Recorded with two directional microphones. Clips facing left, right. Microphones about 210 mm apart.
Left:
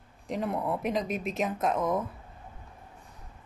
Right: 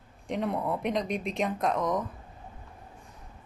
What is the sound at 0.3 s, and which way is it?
Speech, centre (ahead or behind).